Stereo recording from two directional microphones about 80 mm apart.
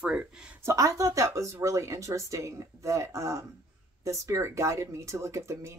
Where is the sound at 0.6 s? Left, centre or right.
Right.